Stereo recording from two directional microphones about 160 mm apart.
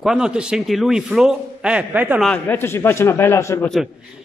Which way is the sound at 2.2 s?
10° left (ahead or behind).